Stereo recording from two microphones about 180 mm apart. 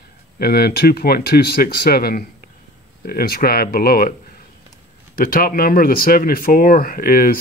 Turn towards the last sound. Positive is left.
turn(degrees=50)  # may be behind; listen again after turning